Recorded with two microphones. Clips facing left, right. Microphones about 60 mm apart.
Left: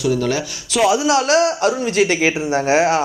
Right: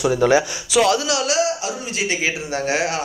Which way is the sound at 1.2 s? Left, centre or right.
Left.